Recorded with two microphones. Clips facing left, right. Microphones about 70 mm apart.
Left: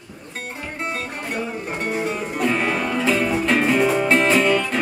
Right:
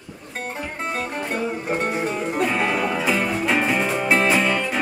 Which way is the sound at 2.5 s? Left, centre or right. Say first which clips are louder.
Even; centre.